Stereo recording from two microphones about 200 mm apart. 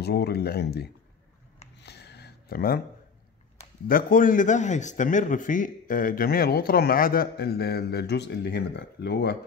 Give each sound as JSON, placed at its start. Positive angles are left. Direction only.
{"t": 0.0, "sound": "a man's voice", "side_deg": 55}
{"t": 1.8, "sound": "a sound", "side_deg": 55}
{"t": 3.8, "sound": "a man's voice", "side_deg": 45}